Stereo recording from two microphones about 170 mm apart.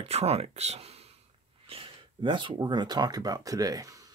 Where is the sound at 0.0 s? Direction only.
35° right (ahead or behind).